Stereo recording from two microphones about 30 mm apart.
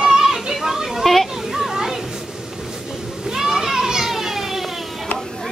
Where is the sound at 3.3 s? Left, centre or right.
Centre.